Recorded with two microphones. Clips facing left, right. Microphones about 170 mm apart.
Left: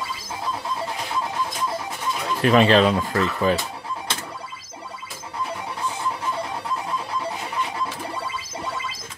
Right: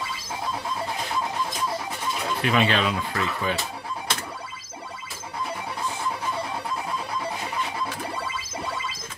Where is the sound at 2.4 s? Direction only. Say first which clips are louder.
Left 8 dB; 40° left (ahead or behind).